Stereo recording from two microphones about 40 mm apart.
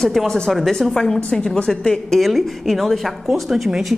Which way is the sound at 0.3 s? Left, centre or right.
Centre.